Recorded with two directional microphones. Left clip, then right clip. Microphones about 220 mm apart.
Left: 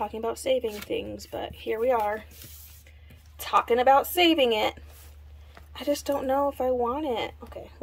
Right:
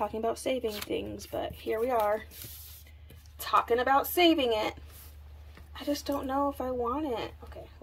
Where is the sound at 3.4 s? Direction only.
10° left (ahead or behind).